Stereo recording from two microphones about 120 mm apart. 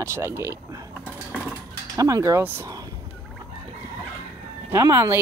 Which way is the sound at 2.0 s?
30° right (ahead or behind).